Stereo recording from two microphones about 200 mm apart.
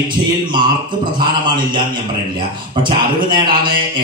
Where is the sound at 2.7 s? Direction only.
25° right (ahead or behind).